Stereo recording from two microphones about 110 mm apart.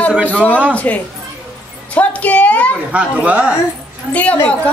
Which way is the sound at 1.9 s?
10° left (ahead or behind).